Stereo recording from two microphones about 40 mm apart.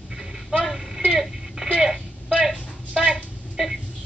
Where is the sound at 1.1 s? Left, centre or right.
Centre.